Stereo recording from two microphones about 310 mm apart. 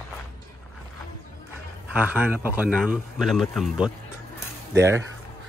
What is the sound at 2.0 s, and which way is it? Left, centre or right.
Speech, centre.